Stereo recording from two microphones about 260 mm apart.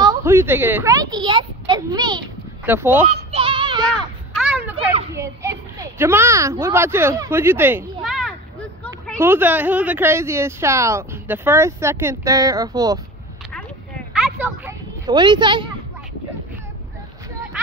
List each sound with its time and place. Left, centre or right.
0.0 s speech: centre
3.1 s music: right
4.4 s children playing: centre
5.1 s a child's voice: centre
8.0 s a sound: centre
9.2 s a woman's voice: centre
14.4 s children playing: centre